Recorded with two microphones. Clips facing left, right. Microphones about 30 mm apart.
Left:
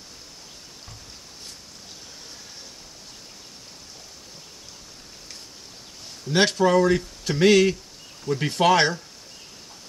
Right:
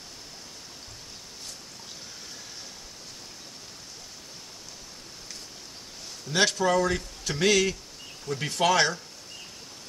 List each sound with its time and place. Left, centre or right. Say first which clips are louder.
6.3 s speech: left 4 dB; left